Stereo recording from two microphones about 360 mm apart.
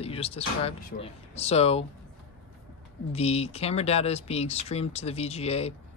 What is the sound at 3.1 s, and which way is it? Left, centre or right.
Speech, centre.